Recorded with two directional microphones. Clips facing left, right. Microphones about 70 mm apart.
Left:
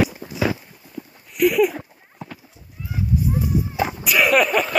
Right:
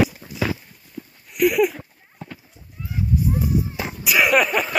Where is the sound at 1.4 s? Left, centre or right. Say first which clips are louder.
Left 1 dB; centre.